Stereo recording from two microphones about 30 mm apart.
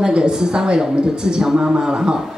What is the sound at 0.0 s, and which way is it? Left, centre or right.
Speech, right.